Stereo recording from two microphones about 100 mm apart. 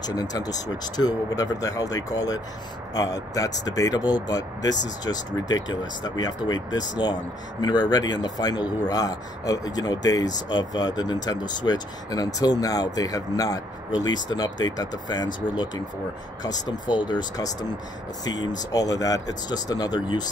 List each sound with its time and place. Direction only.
0.0 s speech: 40° left (ahead or behind)